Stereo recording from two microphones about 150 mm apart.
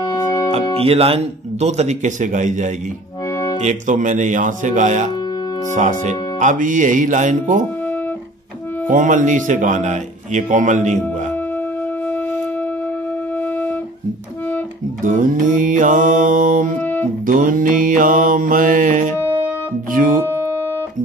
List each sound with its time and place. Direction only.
0.0 s music: 25° left (ahead or behind)
0.7 s speech: 40° right (ahead or behind); by 7.6 s 60° right (ahead or behind)
8.8 s speech: 60° right (ahead or behind)
15.0 s speech: 60° right (ahead or behind)
16.8 s music: 15° left (ahead or behind)
17.3 s speech: 65° right (ahead or behind)
19.1 s music: 15° left (ahead or behind)